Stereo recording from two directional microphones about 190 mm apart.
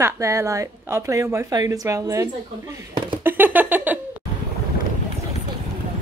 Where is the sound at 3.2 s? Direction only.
10° right (ahead or behind).